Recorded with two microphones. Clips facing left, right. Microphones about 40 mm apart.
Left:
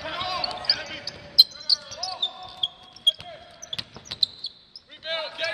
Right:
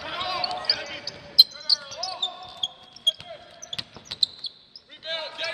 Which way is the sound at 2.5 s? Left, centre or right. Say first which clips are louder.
Left 2 dB; centre.